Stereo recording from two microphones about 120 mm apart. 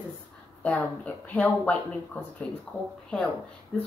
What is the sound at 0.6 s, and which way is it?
Speech, 10° left (ahead or behind).